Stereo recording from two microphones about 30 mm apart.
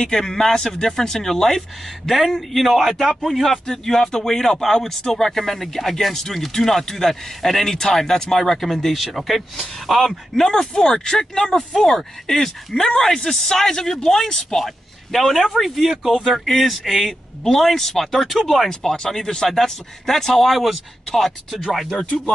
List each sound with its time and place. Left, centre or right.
0.0 s speech: centre
0.6 s a man's voice: left; by 3.5 s centre
3.6 s speech: centre
8.8 s a man's voice: centre
10.0 s speech: centre
15.3 s a man's voice: centre
16.3 s a man's voice: centre